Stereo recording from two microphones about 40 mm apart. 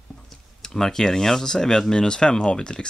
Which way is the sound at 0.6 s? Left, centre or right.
Centre.